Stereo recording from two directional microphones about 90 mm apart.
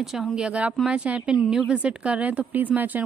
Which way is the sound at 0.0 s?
5° right (ahead or behind).